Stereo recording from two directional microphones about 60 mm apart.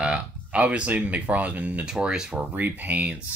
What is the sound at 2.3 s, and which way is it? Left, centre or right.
Speech, right.